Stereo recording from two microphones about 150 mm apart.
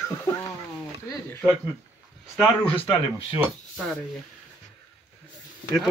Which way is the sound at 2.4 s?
10° left (ahead or behind).